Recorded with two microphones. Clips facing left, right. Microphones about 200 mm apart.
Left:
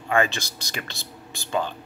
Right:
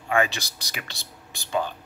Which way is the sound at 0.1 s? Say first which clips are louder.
Left 1 dB; 15° right (ahead or behind).